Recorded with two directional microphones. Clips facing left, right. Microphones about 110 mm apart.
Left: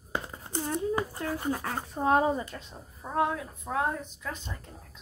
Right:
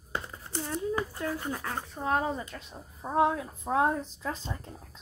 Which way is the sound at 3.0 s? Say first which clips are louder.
Right 3 dB; 25° right (ahead or behind).